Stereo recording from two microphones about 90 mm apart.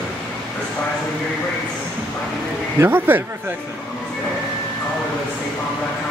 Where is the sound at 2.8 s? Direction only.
20° right (ahead or behind).